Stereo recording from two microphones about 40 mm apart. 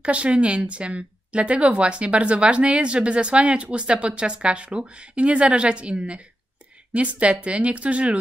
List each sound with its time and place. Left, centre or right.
0.0 s speech: right